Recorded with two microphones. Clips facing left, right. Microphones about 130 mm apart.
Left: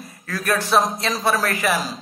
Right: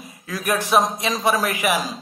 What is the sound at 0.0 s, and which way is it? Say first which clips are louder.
Speech: even; 10° right (ahead or behind).